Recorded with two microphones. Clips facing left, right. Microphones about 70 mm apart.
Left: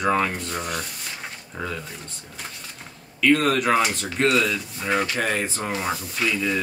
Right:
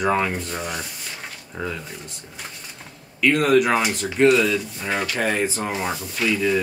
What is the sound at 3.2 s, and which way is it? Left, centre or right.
Speech, centre.